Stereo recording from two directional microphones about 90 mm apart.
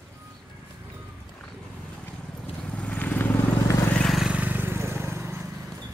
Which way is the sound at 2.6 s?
15° left (ahead or behind).